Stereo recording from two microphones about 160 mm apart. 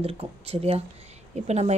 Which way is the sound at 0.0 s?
40° right (ahead or behind).